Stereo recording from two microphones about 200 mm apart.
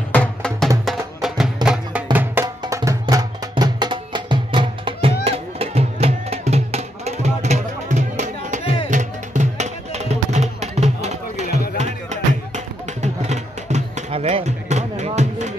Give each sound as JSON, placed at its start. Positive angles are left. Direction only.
{"t": 0.1, "sound": "music", "side_deg": 5}